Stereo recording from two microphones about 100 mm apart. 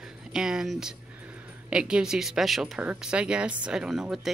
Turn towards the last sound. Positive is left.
turn(degrees=-5)  # may be behind; listen again after turning